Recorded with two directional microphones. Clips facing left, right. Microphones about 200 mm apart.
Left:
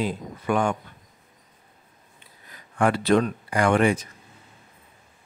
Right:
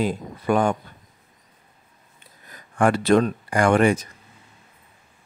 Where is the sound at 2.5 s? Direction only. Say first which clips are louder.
Right 3 dB; 45° right (ahead or behind).